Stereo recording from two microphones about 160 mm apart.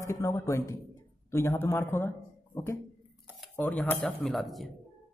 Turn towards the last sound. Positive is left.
turn(degrees=0)  # may be behind; listen again after turning